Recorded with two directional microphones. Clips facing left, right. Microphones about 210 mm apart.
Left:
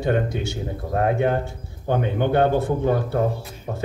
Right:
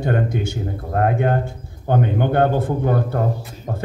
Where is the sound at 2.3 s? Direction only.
50° right (ahead or behind).